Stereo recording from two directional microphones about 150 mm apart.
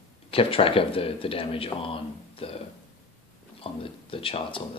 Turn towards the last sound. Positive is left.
turn(degrees=35)  # may be behind; listen again after turning